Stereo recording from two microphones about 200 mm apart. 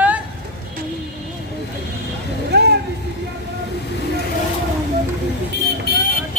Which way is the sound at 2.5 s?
55° right (ahead or behind).